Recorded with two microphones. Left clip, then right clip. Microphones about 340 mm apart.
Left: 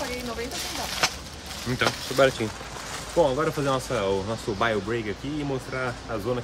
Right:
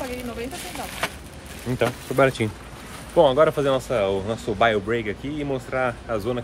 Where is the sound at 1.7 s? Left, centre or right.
Centre.